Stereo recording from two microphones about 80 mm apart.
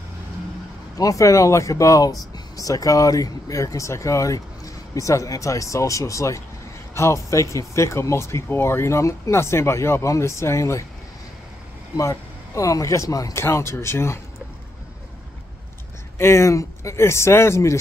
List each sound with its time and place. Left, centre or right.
0.9 s speech: left
12.0 s a man's voice: left
16.2 s speech: left